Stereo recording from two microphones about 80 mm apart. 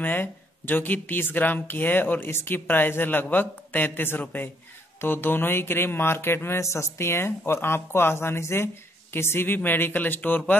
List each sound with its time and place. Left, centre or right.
0.0 s speech: left